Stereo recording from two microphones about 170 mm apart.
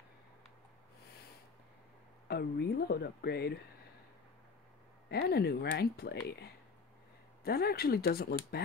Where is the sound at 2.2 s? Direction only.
75° left (ahead or behind).